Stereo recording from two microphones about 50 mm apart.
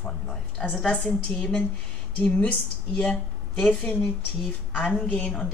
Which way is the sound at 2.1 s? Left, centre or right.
Left.